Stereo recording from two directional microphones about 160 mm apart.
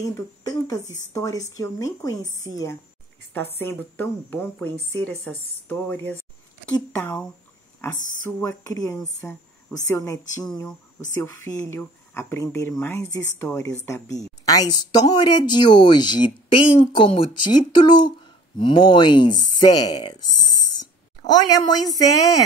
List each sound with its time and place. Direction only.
0.0 s a woman's voice: 20° left (ahead or behind)
8.4 s a woman's voice: 15° left (ahead or behind)
20.8 s a sound: 25° left (ahead or behind)